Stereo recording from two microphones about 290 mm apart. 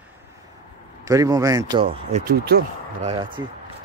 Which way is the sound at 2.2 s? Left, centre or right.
Right.